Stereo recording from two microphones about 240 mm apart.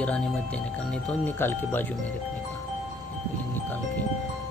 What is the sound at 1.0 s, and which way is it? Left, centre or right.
Speech, centre.